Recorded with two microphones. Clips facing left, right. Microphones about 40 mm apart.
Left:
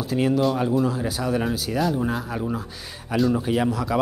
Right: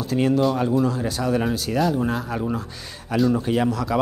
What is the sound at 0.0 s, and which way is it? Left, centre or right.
A man's voice, centre.